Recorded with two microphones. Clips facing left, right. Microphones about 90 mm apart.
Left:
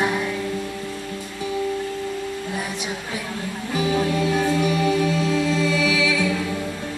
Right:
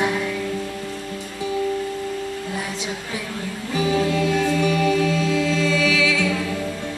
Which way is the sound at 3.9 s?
20° left (ahead or behind).